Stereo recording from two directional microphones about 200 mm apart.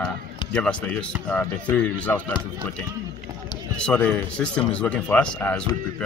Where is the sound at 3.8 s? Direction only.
5° left (ahead or behind).